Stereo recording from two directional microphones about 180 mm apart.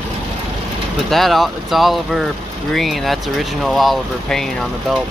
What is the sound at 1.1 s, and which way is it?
Speech, centre (ahead or behind).